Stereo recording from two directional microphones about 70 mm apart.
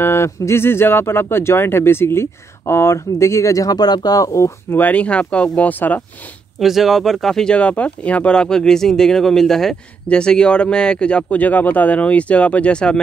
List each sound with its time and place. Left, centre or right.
0.0 s speech: left
3.7 s speech: left
4.7 s speech: left
6.6 s speech: centre